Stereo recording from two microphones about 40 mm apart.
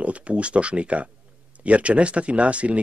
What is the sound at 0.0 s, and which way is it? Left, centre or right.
Speech, right.